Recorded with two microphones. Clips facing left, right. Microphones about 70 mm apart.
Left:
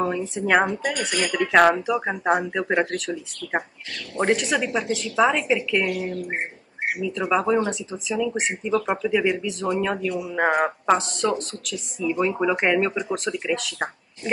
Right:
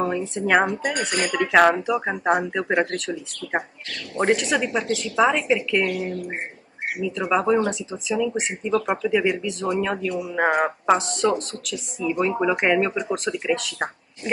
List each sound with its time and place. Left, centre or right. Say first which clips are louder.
0.3 s speech: right 1 dB; centre
0.9 s speech: right 1 dB; right
1.3 s speech: even; centre
4.2 s speech: right 1 dB; centre